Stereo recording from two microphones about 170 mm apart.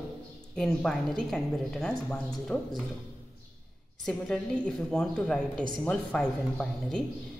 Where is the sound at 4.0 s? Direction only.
5° left (ahead or behind).